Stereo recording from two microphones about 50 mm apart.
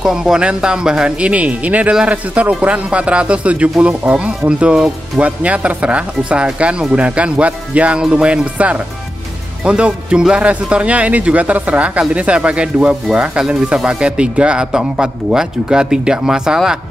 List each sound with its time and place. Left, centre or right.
0.0 s speech: centre